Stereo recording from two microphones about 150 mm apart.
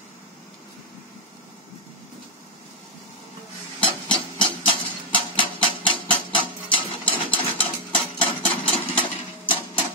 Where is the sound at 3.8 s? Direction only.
35° left (ahead or behind).